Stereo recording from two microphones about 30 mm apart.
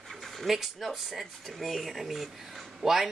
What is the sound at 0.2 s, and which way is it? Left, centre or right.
Speech, centre.